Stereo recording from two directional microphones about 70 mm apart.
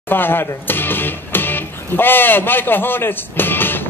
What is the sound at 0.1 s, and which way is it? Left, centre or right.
Speech, left.